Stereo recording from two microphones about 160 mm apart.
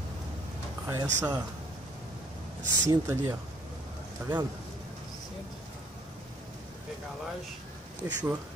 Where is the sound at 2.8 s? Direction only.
15° right (ahead or behind).